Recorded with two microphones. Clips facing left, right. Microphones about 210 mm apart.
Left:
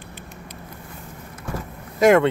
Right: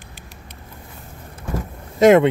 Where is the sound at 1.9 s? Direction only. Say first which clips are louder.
Right 3 dB; 20° right (ahead or behind).